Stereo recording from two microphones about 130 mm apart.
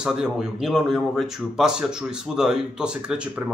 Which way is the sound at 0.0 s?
5° right (ahead or behind).